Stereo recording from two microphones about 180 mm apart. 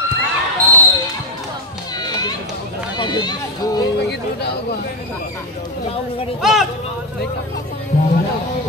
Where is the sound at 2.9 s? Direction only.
25° left (ahead or behind).